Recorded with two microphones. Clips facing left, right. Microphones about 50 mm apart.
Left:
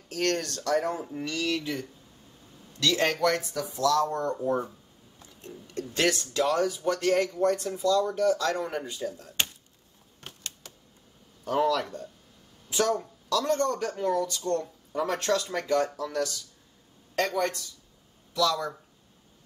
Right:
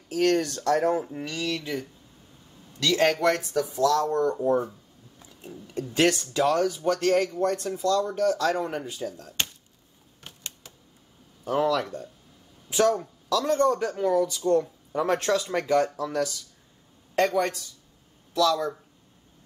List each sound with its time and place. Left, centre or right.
0.1 s speech: centre
0.4 s speech: centre
0.7 s speech: centre
3.1 s speech: right
4.1 s speech: centre
5.2 s speech: centre
7.1 s speech: centre
10.2 s typewriter: centre
10.6 s a sound: centre
11.4 s speech: centre